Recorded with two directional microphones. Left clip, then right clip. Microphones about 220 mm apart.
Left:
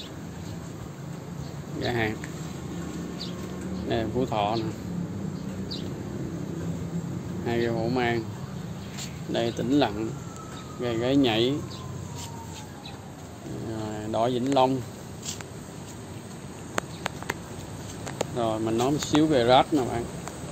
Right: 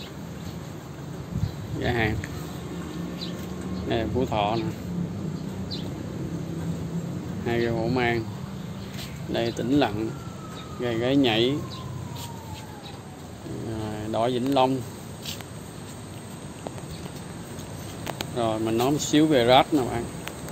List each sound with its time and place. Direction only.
1.8 s speech: 5° right (ahead or behind)
3.9 s speech: centre (ahead or behind)
7.4 s speech: centre (ahead or behind)
9.3 s speech: 5° left (ahead or behind)
13.8 s speech: 5° left (ahead or behind)
18.3 s speech: centre (ahead or behind)